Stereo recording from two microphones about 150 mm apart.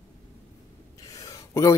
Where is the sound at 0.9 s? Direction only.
25° left (ahead or behind).